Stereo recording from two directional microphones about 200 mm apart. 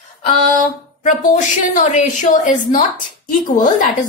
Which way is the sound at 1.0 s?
40° left (ahead or behind).